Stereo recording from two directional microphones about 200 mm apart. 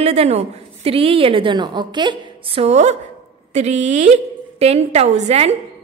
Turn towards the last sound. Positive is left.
turn(degrees=-35)  # may be behind; listen again after turning